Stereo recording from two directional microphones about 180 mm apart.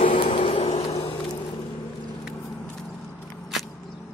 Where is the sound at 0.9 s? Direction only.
25° left (ahead or behind).